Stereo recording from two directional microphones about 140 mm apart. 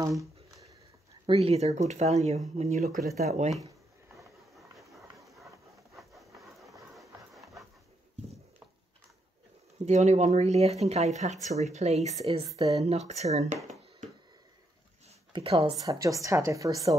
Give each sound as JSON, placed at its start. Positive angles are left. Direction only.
{"t": 0.2, "sound": "a sound", "side_deg": -25}
{"t": 1.2, "sound": "speech", "side_deg": -45}
{"t": 5.0, "sound": "a sound", "side_deg": -20}
{"t": 9.8, "sound": "speech", "side_deg": -55}
{"t": 15.3, "sound": "speech", "side_deg": -45}
{"t": 15.8, "sound": "speech", "side_deg": -25}